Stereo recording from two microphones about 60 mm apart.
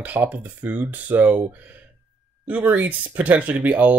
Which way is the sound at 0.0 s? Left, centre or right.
Right.